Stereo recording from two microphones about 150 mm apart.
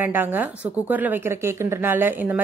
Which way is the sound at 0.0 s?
15° right (ahead or behind).